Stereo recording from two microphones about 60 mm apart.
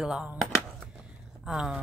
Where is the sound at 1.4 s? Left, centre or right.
Centre.